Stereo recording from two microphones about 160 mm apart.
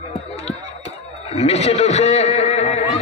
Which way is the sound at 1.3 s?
40° left (ahead or behind).